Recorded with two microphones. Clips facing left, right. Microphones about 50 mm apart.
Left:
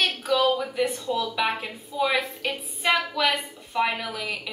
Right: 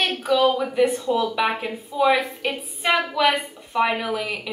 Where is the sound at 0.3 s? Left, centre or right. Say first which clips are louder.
Right 4 dB; centre.